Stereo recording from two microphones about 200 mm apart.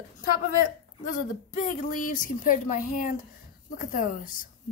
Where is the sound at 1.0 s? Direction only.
40° left (ahead or behind).